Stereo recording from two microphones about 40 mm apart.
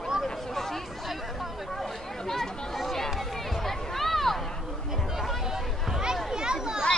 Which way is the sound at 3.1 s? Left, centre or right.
Centre.